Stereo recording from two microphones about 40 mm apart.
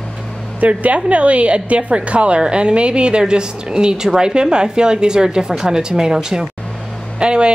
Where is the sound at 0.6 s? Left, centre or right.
Right.